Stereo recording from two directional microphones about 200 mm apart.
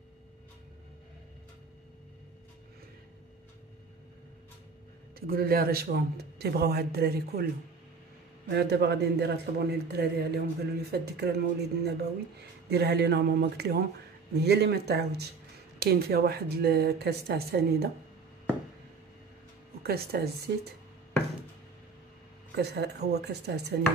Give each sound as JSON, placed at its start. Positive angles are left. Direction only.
{"t": 5.2, "sound": "speech", "side_deg": -50}
{"t": 8.5, "sound": "a man's voice", "side_deg": -55}
{"t": 19.8, "sound": "speech", "side_deg": -50}
{"t": 22.6, "sound": "a man's voice", "side_deg": -55}